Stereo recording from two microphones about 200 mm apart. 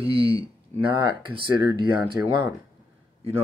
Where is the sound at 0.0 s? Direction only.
30° right (ahead or behind).